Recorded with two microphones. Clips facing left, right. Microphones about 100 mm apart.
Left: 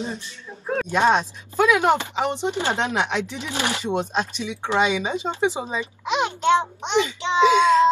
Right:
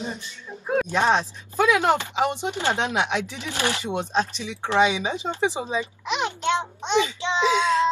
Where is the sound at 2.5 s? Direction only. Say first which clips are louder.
Left 1 dB; 15° left (ahead or behind).